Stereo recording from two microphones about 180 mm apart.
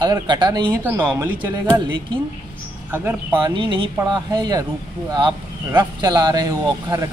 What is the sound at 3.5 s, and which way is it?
Speech, 25° right (ahead or behind).